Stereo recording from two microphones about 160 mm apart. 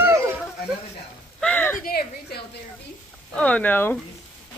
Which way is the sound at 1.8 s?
75° left (ahead or behind).